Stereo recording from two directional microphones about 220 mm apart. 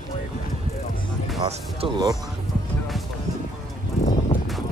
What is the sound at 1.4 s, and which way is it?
Speech, 20° right (ahead or behind).